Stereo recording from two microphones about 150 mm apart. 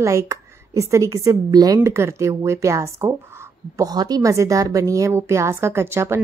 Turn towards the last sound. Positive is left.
turn(degrees=-15)  # may be behind; listen again after turning